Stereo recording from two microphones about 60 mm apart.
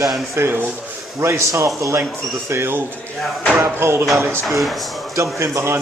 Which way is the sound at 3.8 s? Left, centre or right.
Right.